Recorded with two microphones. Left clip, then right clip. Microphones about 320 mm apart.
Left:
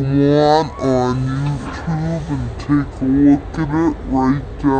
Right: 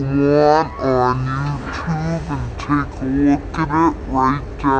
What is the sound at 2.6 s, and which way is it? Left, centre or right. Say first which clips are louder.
Speech: left 2 dB; left.